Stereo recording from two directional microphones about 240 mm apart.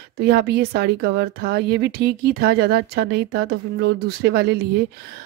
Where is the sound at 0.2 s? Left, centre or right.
Right.